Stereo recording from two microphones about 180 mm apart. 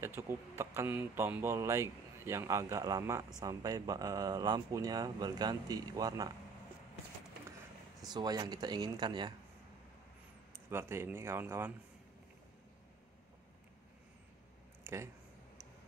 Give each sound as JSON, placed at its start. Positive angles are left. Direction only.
{"t": 0.0, "sound": "speech", "side_deg": -15}
{"t": 8.0, "sound": "speech", "side_deg": -20}
{"t": 10.5, "sound": "speech", "side_deg": -15}
{"t": 14.8, "sound": "a sound", "side_deg": -15}